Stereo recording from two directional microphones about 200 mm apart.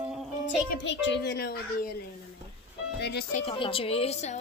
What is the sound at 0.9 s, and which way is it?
A child's voice, 65° left (ahead or behind).